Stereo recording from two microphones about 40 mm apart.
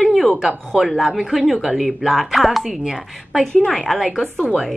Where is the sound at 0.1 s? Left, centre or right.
Centre.